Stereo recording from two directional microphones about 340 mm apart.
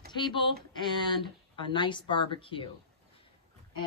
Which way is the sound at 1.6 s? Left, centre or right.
Centre.